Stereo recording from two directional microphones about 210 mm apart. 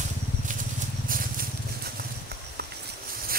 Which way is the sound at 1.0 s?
40° right (ahead or behind).